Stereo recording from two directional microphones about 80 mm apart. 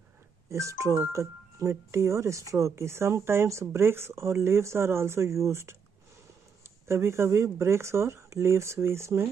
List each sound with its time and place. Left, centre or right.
0.5 s speech: right
6.9 s speech: right